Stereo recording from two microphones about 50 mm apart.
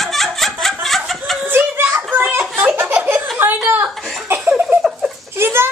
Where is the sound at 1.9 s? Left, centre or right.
Right.